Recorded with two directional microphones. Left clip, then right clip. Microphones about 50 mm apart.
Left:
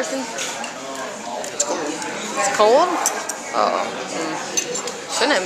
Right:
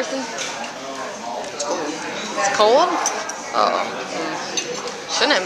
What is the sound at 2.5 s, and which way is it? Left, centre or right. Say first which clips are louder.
Speech: even; left.